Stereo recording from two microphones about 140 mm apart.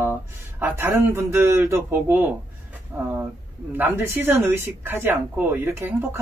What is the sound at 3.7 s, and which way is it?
Speech, 15° right (ahead or behind).